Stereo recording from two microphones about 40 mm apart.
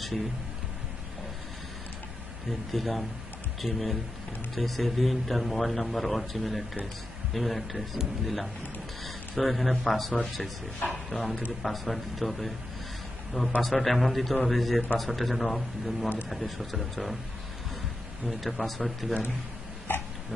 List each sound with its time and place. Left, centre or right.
2.7 s a man's voice: centre
13.6 s a man's voice: centre
18.2 s a man's voice: centre
19.9 s dog: left